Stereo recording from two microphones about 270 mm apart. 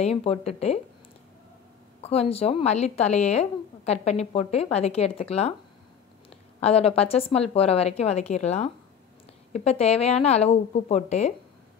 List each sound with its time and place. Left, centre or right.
0.0 s speech: left
2.0 s speech: left
6.6 s speech: left